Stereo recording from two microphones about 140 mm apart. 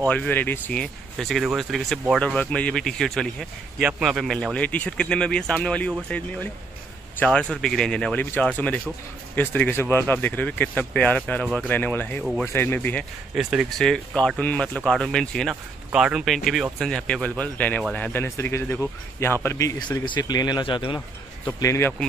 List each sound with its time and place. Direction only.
0.1 s speech: 10° left (ahead or behind)
1.1 s speech: centre (ahead or behind)
13.3 s speech: 5° right (ahead or behind); by 21.0 s 35° left (ahead or behind)
21.5 s speech: 20° left (ahead or behind)